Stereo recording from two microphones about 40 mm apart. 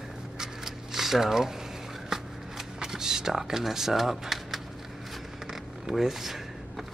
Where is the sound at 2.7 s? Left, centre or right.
Centre.